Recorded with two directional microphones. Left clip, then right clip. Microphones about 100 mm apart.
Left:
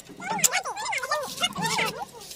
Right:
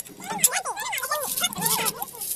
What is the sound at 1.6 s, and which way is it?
Chicken, 35° left (ahead or behind).